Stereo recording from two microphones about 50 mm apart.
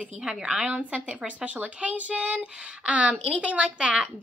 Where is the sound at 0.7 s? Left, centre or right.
Right.